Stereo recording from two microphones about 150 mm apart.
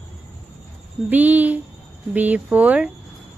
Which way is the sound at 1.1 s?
10° right (ahead or behind).